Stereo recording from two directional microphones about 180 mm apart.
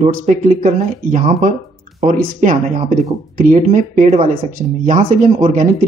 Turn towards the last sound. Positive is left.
turn(degrees=-40)  # may be behind; listen again after turning